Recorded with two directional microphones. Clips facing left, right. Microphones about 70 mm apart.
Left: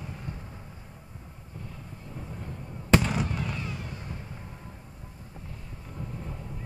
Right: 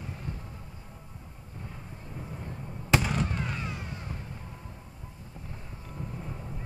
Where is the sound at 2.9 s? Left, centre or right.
Centre.